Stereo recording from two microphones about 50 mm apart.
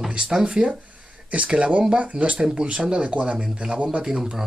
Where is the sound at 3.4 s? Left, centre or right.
Centre.